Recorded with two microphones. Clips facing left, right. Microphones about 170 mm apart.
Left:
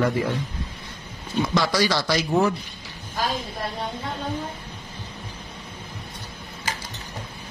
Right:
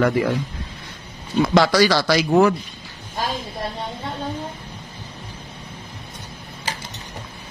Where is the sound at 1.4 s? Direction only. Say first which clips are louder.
Right 6 dB; 80° right.